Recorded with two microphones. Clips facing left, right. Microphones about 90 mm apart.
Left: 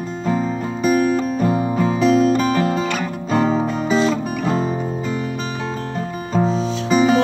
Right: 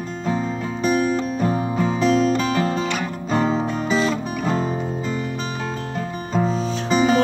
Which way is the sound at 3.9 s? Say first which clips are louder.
Left 3 dB; 30° left (ahead or behind).